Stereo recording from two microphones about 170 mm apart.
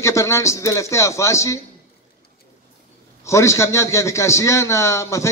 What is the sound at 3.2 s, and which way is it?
A man's voice, 15° left (ahead or behind).